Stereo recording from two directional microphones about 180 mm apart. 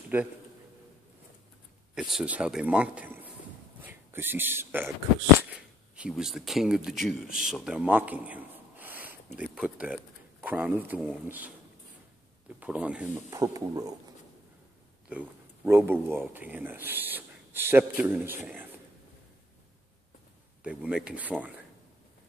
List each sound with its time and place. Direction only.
0.1 s speech: 10° right (ahead or behind)
2.0 s speech: centre (ahead or behind)
5.9 s a man's voice: 5° right (ahead or behind)
12.5 s speech: 10° right (ahead or behind)
13.3 s speech: 20° right (ahead or behind)
15.0 s speech: 10° right (ahead or behind)
20.6 s speech: 5° right (ahead or behind)